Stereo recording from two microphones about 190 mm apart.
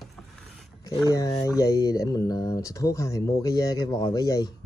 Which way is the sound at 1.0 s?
15° left (ahead or behind).